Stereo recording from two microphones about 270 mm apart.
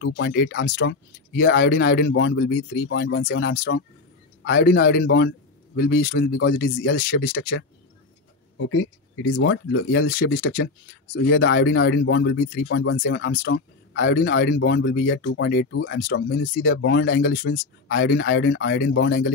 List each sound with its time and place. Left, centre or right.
0.0 s speech: left
8.5 s speech: left